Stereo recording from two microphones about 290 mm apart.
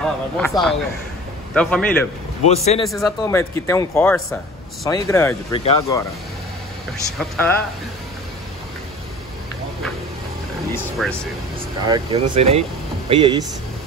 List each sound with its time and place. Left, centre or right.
0.0 s speech: centre
2.4 s speech: left
3.0 s speech: centre
6.9 s speech: centre
10.7 s speech: centre
11.8 s speech: centre